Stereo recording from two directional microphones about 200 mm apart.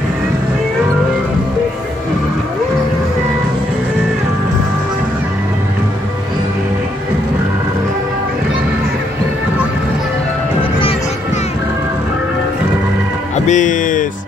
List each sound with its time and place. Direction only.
13.5 s music: 40° left (ahead or behind)